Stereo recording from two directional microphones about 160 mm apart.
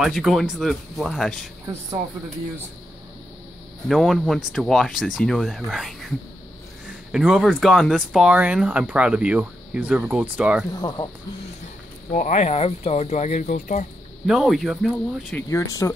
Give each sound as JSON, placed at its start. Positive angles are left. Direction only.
{"t": 0.0, "sound": "speech", "side_deg": 0}
{"t": 3.9, "sound": "speech", "side_deg": 0}
{"t": 10.7, "sound": "speech", "side_deg": 25}
{"t": 12.1, "sound": "speech", "side_deg": 50}
{"t": 14.2, "sound": "speech", "side_deg": 0}
{"t": 15.4, "sound": "speech", "side_deg": 20}